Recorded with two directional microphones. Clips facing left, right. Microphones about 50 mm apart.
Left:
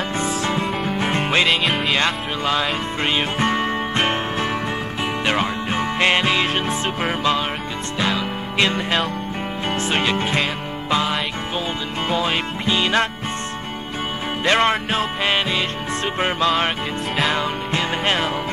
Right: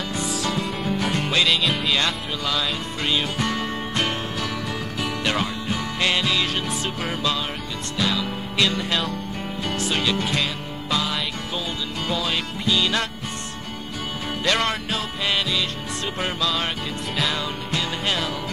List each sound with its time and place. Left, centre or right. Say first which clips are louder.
0.2 s music: left 3 dB; left
1.6 s music: left 3 dB; centre
3.0 s music: left 3 dB; left
9.7 s speech: left 3 dB; left
10.9 s music: left 4 dB; left
14.4 s music: left 5 dB; left